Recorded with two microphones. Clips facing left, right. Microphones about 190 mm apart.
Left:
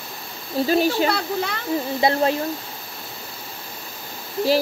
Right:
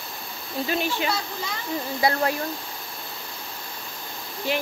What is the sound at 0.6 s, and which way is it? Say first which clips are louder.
Speech: left 7 dB; 35° left (ahead or behind).